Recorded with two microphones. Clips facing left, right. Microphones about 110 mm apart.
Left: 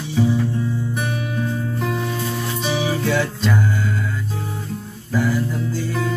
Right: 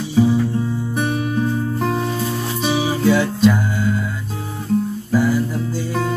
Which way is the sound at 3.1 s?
10° right (ahead or behind).